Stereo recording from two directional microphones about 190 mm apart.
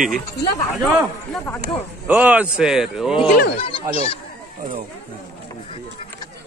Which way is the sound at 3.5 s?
30° left (ahead or behind).